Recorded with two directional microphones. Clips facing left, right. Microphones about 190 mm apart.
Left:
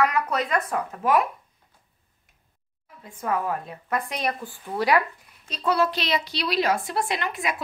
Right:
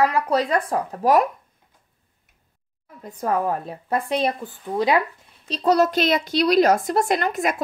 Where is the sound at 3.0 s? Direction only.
35° right (ahead or behind); by 5.0 s 20° right (ahead or behind).